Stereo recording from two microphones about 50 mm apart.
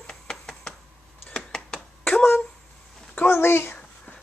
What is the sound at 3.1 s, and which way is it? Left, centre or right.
Speech, left.